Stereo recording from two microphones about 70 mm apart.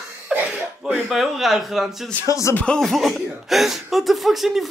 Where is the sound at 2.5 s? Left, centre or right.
Centre.